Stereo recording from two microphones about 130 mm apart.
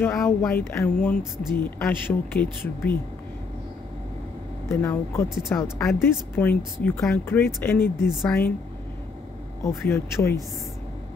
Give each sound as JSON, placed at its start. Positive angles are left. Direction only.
{"t": 0.0, "sound": "speech", "side_deg": 20}
{"t": 4.6, "sound": "speech", "side_deg": 20}
{"t": 8.1, "sound": "a woman's voice", "side_deg": 0}
{"t": 9.8, "sound": "speech", "side_deg": 20}